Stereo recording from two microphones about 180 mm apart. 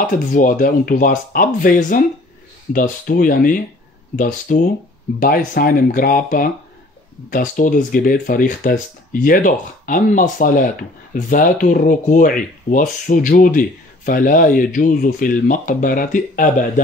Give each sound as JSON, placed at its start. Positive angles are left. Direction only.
{"t": 0.0, "sound": "speech", "side_deg": 50}